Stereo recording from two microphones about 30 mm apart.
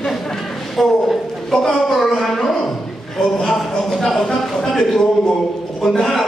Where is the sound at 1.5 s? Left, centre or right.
Centre.